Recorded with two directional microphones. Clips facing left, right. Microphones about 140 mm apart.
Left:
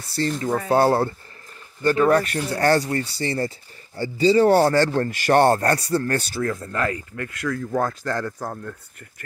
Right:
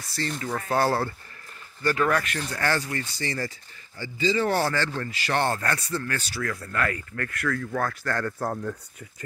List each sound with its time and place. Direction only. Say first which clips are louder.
0.0 s speech: left 7 dB; 30° left (ahead or behind)
6.4 s speech: left 4 dB; 25° left (ahead or behind)
8.3 s speech: right 2 dB; centre (ahead or behind)